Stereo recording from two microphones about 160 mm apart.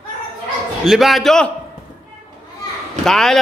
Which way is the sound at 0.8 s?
Centre (ahead or behind).